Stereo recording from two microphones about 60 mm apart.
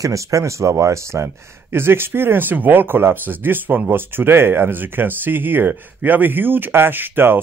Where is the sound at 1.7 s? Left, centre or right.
Right.